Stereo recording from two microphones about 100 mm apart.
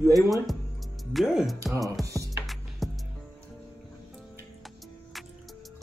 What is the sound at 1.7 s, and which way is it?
Music, 35° right (ahead or behind).